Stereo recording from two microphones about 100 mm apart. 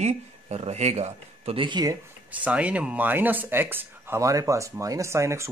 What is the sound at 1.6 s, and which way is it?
Speech, 45° right (ahead or behind).